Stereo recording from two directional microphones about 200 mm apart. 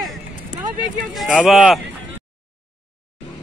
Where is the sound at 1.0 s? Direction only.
Centre (ahead or behind).